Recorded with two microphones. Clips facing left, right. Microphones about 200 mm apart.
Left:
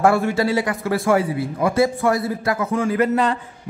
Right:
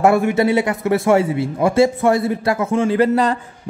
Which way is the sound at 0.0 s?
20° right (ahead or behind).